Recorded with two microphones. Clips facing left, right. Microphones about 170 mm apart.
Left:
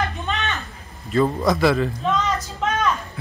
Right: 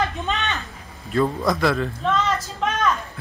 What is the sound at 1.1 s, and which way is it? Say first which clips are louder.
A man's voice: left 2 dB; centre (ahead or behind).